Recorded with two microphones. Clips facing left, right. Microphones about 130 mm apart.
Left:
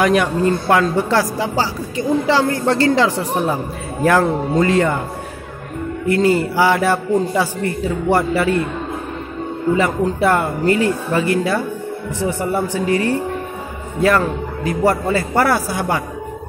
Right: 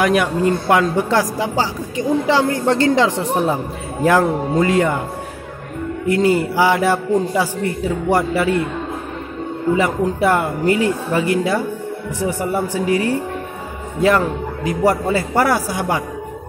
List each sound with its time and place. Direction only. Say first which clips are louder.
0.0 s a woman's voice: left 1 dB; 5° right (ahead or behind)
6.0 s a woman's voice: even; 15° right (ahead or behind)
9.8 s a woman's voice: even; 10° right (ahead or behind)